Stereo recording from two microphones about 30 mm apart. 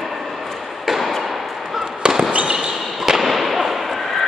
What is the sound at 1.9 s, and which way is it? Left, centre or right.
Fireworks, right.